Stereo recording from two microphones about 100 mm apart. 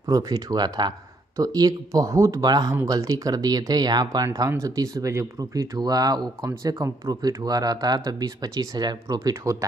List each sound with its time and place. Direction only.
0.1 s speech: 40° right (ahead or behind)
2.4 s speech: 40° right (ahead or behind)
2.7 s speech: 30° right (ahead or behind)
9.3 s speech: 30° right (ahead or behind)